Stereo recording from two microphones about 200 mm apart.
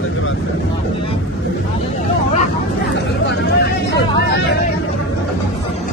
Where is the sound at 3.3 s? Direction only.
60° left (ahead or behind).